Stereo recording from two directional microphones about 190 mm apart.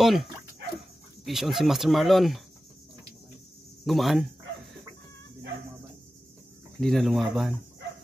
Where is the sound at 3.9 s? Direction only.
Centre (ahead or behind).